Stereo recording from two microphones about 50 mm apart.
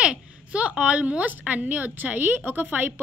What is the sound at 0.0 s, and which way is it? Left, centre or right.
A woman's voice, centre.